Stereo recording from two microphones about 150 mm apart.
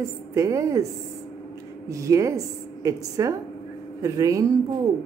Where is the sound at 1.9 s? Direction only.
20° right (ahead or behind).